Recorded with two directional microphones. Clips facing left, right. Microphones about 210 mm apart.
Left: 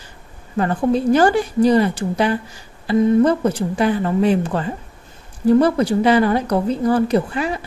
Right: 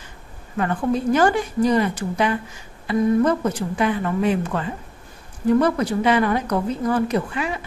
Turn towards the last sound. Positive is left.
turn(degrees=35)  # may be behind; listen again after turning